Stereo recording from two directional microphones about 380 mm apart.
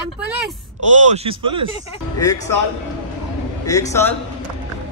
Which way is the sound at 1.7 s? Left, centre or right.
Centre.